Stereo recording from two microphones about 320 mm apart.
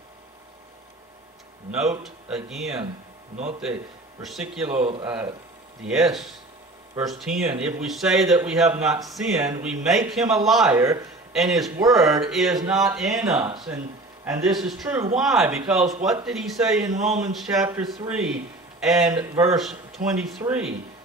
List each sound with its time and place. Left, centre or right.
1.7 s a man's voice: centre
4.2 s a man's voice: centre
4.6 s a man's voice: centre
16.9 s speech: right
17.4 s a man's voice: centre